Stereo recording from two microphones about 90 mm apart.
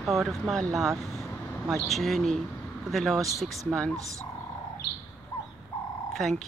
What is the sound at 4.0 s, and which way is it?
Speech, 40° right (ahead or behind).